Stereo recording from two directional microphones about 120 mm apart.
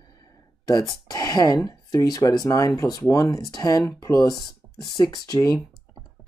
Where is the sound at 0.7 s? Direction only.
30° left (ahead or behind).